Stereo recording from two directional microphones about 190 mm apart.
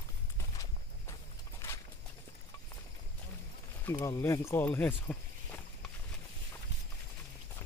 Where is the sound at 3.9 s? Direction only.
15° left (ahead or behind).